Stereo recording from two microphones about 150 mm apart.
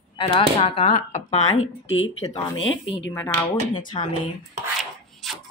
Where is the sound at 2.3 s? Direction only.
30° left (ahead or behind).